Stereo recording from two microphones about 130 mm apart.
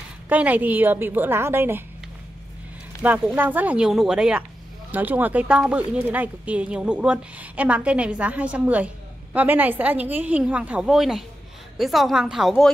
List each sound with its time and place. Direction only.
0.3 s speech: 10° right (ahead or behind)
3.0 s a woman's voice: 10° right (ahead or behind)